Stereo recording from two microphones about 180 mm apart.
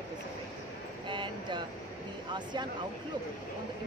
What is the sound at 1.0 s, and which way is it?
Speech, 25° right (ahead or behind).